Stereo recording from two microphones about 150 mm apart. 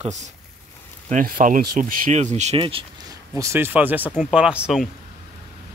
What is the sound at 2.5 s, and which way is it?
Speech, 35° right (ahead or behind).